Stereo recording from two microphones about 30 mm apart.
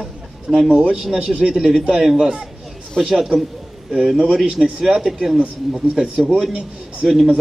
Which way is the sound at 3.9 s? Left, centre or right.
Right.